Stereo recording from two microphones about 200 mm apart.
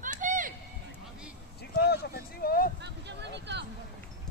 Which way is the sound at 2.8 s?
60° right (ahead or behind).